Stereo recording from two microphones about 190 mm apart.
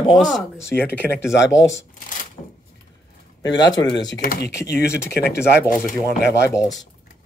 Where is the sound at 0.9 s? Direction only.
10° left (ahead or behind).